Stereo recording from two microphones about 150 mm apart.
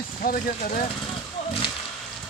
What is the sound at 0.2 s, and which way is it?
Speech, 70° left (ahead or behind).